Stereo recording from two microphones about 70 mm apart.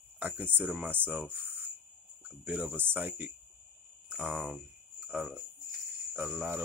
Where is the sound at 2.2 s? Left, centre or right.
Right.